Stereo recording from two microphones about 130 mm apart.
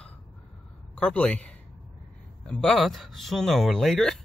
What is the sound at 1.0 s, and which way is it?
A man's voice, 10° left (ahead or behind).